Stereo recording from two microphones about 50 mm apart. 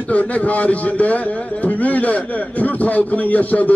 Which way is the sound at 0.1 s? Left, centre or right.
Left.